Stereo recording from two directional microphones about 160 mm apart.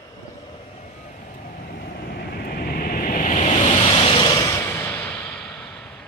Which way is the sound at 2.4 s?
70° left (ahead or behind).